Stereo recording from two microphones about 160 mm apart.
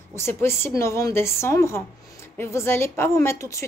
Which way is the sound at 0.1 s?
15° left (ahead or behind).